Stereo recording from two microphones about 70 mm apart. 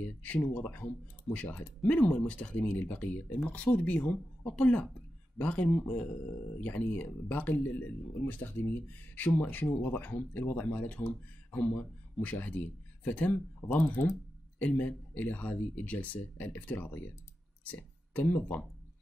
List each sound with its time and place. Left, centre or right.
0.0 s speech: left
8.8 s speech: left
13.7 s speech: left
14.6 s speech: left